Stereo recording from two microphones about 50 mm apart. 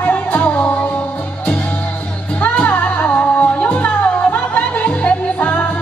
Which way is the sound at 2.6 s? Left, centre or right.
Left.